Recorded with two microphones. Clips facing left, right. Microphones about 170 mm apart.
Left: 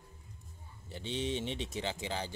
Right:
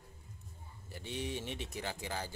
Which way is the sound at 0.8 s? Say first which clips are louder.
Left 4 dB; 25° left (ahead or behind).